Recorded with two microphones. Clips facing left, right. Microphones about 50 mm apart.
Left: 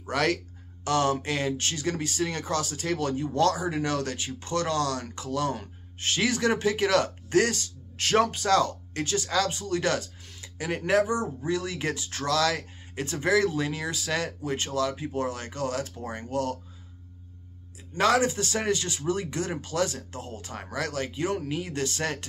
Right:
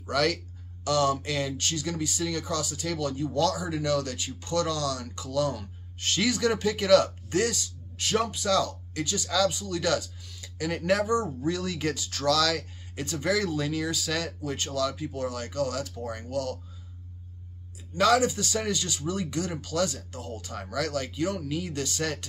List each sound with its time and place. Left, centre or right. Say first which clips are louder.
0.0 s speech: even; left
10.4 s speech: even; left
17.9 s speech: even; left